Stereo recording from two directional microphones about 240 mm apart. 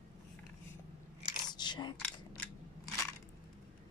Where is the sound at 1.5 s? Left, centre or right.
Centre.